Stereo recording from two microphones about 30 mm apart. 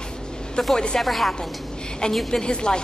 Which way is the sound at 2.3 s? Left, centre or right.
Left.